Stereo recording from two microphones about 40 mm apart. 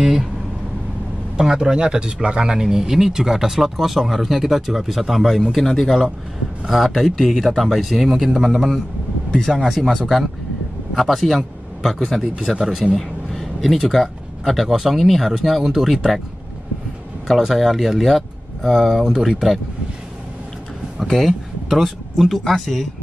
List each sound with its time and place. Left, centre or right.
0.0 s speech: centre
1.4 s speech: centre
2.6 s speech: centre
12.5 s speech: centre
12.9 s speech: centre
17.3 s speech: centre
21.2 s speech: centre